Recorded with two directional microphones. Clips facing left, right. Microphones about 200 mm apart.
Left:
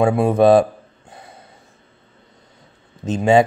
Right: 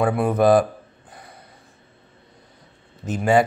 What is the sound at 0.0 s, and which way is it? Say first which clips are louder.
Speech: left 4 dB; 25° left (ahead or behind).